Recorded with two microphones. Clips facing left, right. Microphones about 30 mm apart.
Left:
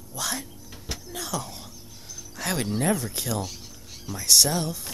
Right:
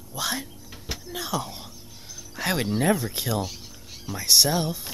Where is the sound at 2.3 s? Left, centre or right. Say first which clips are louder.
Right 2 dB; centre.